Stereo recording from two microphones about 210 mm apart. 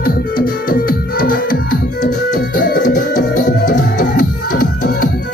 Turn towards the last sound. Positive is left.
turn(degrees=40)  # may be behind; listen again after turning